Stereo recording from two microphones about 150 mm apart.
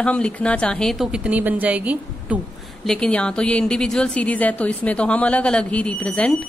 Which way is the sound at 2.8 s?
5° left (ahead or behind).